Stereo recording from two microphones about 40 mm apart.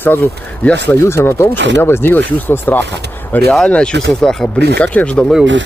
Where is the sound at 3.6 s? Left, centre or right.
Left.